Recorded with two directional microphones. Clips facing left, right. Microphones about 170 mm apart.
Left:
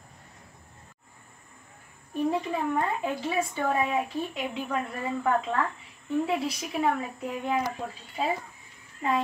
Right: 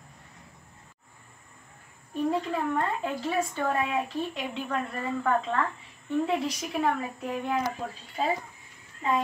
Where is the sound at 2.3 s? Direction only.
10° left (ahead or behind).